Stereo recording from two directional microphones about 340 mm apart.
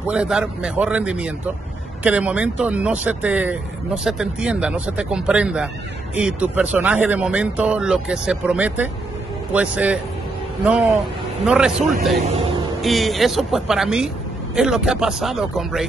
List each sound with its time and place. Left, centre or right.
0.1 s speech: centre